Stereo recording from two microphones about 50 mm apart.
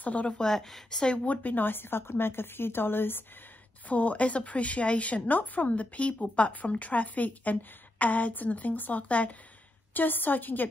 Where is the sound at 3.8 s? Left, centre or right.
Left.